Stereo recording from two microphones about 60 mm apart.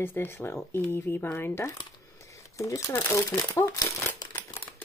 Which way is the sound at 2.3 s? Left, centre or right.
Left.